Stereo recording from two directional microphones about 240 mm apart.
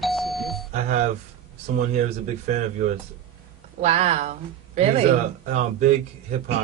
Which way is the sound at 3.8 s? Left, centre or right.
Right.